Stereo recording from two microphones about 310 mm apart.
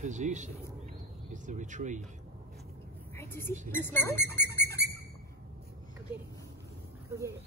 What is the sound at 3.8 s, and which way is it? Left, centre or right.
Speech, centre.